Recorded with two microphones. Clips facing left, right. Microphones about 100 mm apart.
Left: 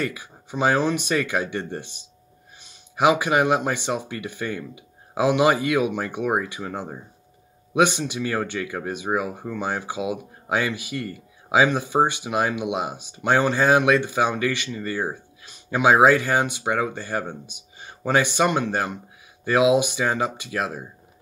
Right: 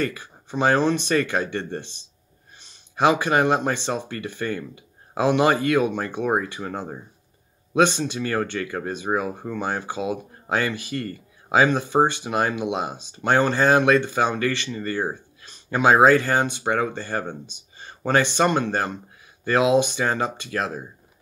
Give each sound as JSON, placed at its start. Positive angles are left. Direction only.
{"t": 0.0, "sound": "speech", "side_deg": 15}
{"t": 6.6, "sound": "speech", "side_deg": -5}
{"t": 7.7, "sound": "speech", "side_deg": 15}